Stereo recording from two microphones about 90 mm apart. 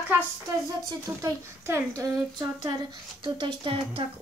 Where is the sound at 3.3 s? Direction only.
70° right (ahead or behind).